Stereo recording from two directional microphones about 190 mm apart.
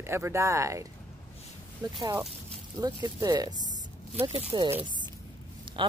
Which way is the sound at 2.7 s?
20° right (ahead or behind).